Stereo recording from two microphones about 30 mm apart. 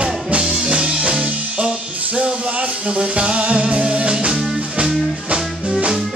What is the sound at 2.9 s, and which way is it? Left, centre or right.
Music, right.